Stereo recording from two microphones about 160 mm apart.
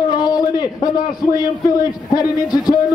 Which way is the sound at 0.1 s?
25° left (ahead or behind).